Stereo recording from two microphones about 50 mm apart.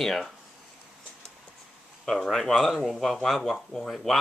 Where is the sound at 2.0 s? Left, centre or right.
Centre.